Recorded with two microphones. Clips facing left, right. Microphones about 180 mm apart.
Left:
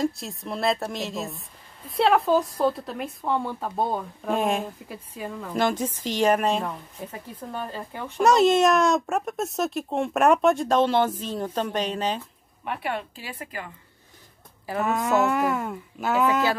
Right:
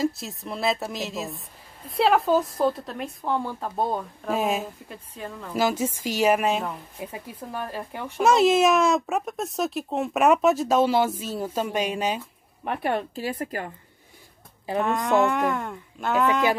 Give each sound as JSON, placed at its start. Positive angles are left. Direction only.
{"t": 0.0, "sound": "a woman's voice", "side_deg": 0}
{"t": 8.2, "sound": "a woman's voice", "side_deg": 0}
{"t": 12.6, "sound": "speech", "side_deg": -40}
{"t": 14.8, "sound": "a woman's voice", "side_deg": 5}